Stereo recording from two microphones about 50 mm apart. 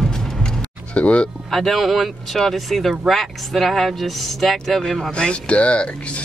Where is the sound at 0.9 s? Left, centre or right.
Left.